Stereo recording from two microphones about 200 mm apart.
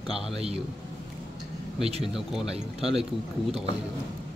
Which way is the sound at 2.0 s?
Centre (ahead or behind).